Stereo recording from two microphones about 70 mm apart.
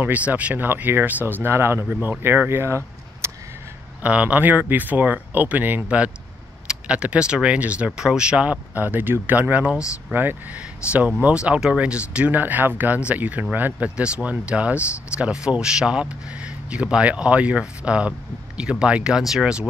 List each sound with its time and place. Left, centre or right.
0.0 s speech: right
4.0 s speech: centre